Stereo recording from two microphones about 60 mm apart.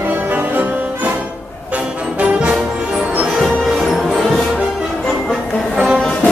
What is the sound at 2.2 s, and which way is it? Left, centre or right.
Music, right.